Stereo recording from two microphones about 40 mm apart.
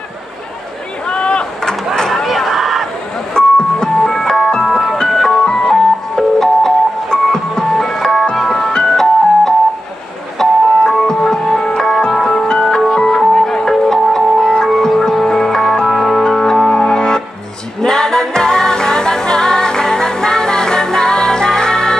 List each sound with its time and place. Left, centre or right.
1.0 s rowboat: left
2.0 s a sound: centre
2.2 s a sound: centre
3.3 s music: centre
4.9 s ice cream truck: centre
5.5 s music: centre
8.4 s ice cream truck: centre
8.7 s music: centre
10.4 s ice cream truck: centre
11.1 s music: centre
12.9 s music: left
13.4 s music: centre